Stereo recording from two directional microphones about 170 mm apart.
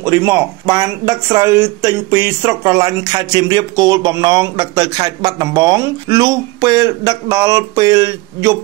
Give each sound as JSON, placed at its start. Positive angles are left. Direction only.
{"t": 0.0, "sound": "speech", "side_deg": -20}